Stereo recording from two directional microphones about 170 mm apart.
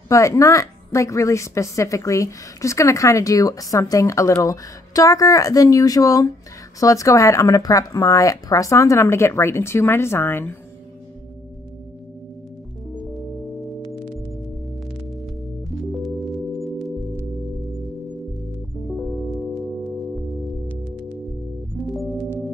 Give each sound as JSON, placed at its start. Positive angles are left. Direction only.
{"t": 0.1, "sound": "a woman's voice", "side_deg": 20}
{"t": 15.9, "sound": "singing bowl", "side_deg": 0}
{"t": 18.9, "sound": "music", "side_deg": 0}
{"t": 21.7, "sound": "organ", "side_deg": 0}